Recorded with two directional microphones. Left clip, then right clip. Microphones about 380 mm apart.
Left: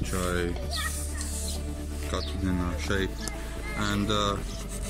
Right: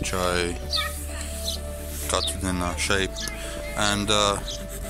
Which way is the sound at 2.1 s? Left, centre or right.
Centre.